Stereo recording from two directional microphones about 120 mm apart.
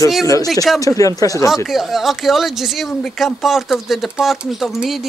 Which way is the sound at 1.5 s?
Centre (ahead or behind).